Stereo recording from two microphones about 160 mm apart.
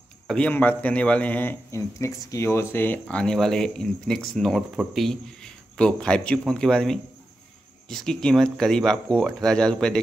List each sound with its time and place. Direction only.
0.3 s a man's voice: 10° left (ahead or behind)